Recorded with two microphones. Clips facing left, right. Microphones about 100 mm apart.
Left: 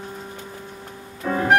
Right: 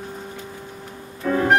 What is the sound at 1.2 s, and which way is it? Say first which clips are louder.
Music: right 1 dB; 5° left (ahead or behind).